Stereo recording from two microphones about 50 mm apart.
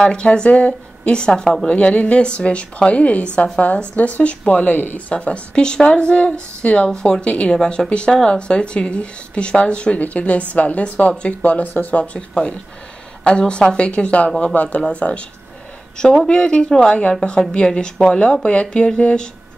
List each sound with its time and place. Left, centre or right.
0.0 s a woman's voice: centre; by 12.0 s left
12.0 s speech: left
16.3 s a woman's voice: centre